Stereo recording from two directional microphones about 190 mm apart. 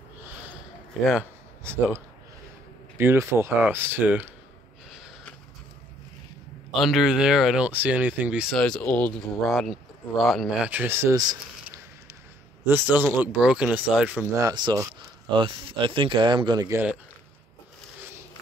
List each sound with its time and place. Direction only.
1.6 s speech: 15° right (ahead or behind)
6.7 s speech: centre (ahead or behind); by 11.3 s 20° right (ahead or behind)
12.6 s speech: 10° right (ahead or behind)
14.4 s speech: 20° right (ahead or behind)